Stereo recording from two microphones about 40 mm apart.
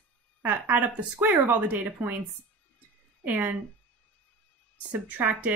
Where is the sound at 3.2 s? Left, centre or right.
Right.